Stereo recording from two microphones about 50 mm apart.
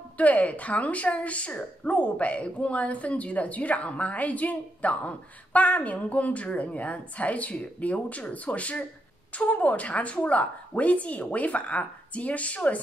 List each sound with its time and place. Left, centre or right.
0.2 s a woman's voice: left